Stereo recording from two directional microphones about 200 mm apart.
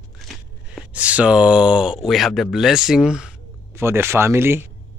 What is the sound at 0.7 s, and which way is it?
Speech, 5° right (ahead or behind).